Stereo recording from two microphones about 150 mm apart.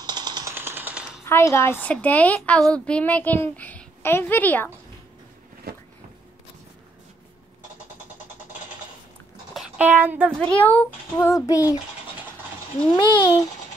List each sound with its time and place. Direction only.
0.0 s a sound: 30° right (ahead or behind)
0.6 s typing: 15° right (ahead or behind)
1.2 s a woman's voice: 15° left (ahead or behind)
5.7 s a sound: 90° right
9.5 s a sound: centre (ahead or behind)
9.8 s speech: 10° right (ahead or behind)
10.5 s a woman's voice: 10° left (ahead or behind)
11.1 s a child's voice: 20° left (ahead or behind)
12.9 s speech: 35° left (ahead or behind)